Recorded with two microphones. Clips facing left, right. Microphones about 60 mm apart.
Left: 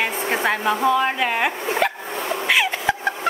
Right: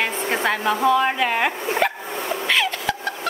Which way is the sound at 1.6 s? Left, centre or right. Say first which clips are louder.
Even; centre.